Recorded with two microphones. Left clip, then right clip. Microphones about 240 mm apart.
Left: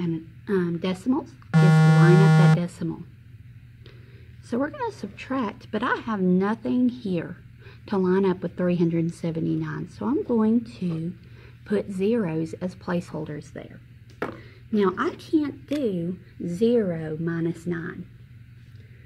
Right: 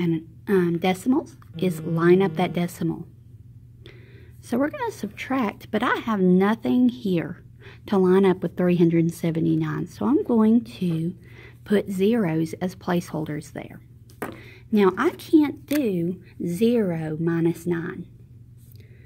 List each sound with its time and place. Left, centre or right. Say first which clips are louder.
0.0 s a woman's voice: right 5 dB; right
4.5 s a woman's voice: right 2 dB; right